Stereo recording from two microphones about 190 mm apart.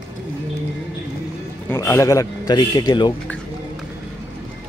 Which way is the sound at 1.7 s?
15° left (ahead or behind).